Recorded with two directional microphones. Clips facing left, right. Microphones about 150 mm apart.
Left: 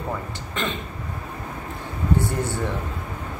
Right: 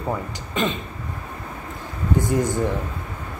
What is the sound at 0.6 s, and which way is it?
Speech, 15° right (ahead or behind).